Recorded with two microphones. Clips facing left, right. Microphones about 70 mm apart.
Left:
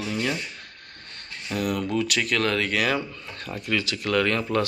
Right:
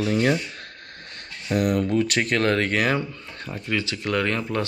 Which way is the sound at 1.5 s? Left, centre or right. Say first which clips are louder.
Right 4 dB; right.